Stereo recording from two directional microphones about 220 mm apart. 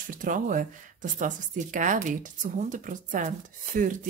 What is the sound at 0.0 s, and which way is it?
Speech, 40° right (ahead or behind).